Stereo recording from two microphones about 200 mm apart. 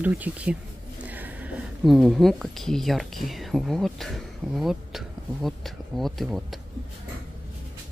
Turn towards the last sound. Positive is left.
turn(degrees=0)  # may be behind; listen again after turning